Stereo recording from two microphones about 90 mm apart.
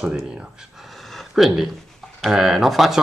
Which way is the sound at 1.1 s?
Centre (ahead or behind).